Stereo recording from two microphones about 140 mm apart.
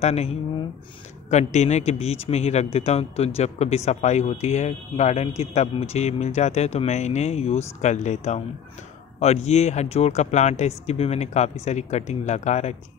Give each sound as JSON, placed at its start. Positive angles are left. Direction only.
{"t": 0.0, "sound": "speech", "side_deg": 50}